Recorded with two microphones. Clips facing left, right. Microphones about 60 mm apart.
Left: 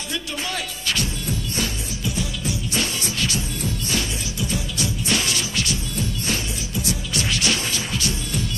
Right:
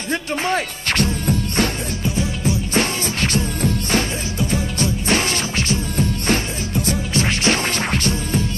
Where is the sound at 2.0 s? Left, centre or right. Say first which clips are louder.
Right 5 dB; right.